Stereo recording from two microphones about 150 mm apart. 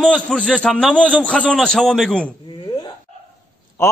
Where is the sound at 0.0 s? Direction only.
5° left (ahead or behind).